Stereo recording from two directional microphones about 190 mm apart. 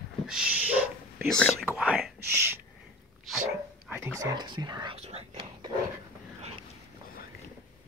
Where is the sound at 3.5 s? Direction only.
10° right (ahead or behind); by 5.2 s 35° right (ahead or behind).